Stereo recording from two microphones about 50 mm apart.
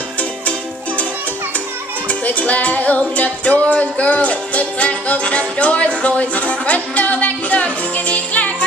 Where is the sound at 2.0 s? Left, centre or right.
Left.